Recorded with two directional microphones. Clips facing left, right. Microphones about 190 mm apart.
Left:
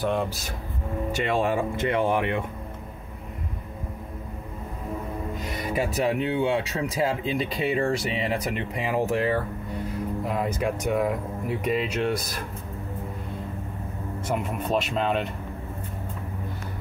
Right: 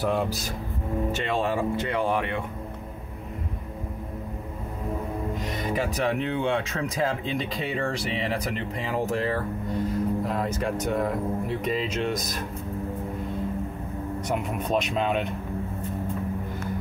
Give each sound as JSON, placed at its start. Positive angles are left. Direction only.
{"t": 0.0, "sound": "speech", "side_deg": 0}
{"t": 1.1, "sound": "speech", "side_deg": 15}
{"t": 5.6, "sound": "speech", "side_deg": 10}
{"t": 14.2, "sound": "speech", "side_deg": 5}